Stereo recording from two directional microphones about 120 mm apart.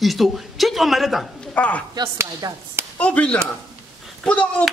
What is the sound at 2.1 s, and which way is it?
Speech, 20° right (ahead or behind).